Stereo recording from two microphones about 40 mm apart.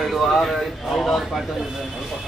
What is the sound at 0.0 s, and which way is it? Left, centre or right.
Speech, centre.